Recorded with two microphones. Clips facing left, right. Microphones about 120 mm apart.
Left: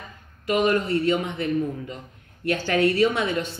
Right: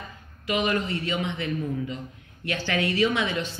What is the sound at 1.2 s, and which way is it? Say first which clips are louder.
A woman's voice: left 4 dB; 45° left (ahead or behind).